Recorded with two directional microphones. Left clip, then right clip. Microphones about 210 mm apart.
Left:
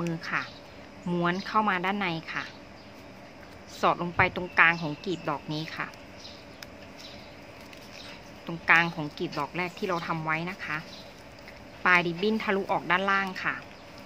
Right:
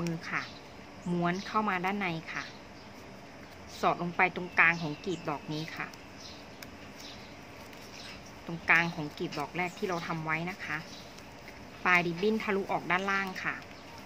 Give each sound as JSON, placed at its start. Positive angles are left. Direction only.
{"t": 0.2, "sound": "speech", "side_deg": 20}
{"t": 3.8, "sound": "speech", "side_deg": 20}
{"t": 8.6, "sound": "speech", "side_deg": 20}
{"t": 11.8, "sound": "speech", "side_deg": 20}